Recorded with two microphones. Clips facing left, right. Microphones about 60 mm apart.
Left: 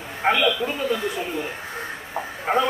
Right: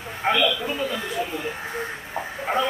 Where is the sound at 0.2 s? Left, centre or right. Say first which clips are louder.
Left 2 dB; centre.